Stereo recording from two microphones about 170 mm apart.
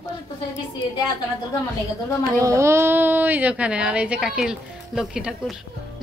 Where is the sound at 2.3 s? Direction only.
15° right (ahead or behind).